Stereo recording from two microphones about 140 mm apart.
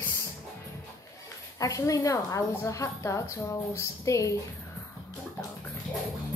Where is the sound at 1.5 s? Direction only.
25° left (ahead or behind).